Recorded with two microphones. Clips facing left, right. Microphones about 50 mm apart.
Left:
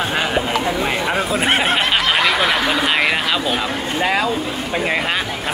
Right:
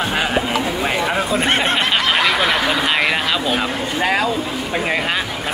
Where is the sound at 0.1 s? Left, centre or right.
Centre.